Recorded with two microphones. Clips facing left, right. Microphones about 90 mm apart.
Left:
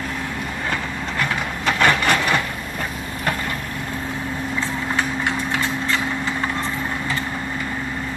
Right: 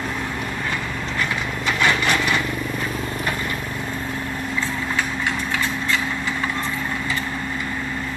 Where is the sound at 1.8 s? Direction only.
45° left (ahead or behind).